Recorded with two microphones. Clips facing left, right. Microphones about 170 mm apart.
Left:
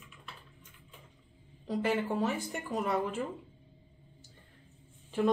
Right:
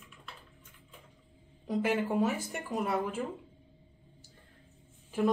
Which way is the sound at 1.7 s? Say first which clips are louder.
Right 1 dB; 10° right (ahead or behind).